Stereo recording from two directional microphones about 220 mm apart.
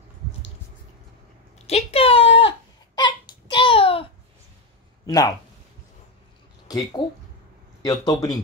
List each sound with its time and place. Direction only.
1.7 s a sound: 25° left (ahead or behind)
5.0 s speech: 15° left (ahead or behind)
6.7 s a man's voice: 15° left (ahead or behind)